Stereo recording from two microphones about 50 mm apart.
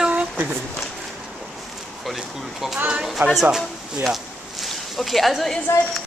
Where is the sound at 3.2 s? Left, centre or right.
Right.